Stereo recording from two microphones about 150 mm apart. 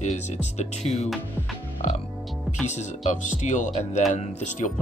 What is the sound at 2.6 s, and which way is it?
Speech, 50° left (ahead or behind).